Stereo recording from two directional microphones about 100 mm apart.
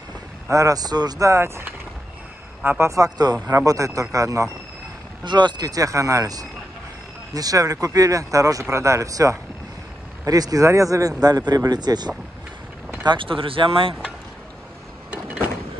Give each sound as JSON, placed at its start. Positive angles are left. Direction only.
{"t": 0.5, "sound": "speech", "side_deg": -35}
{"t": 2.9, "sound": "speech", "side_deg": -40}
{"t": 5.2, "sound": "speech", "side_deg": -50}
{"t": 13.0, "sound": "speech", "side_deg": -55}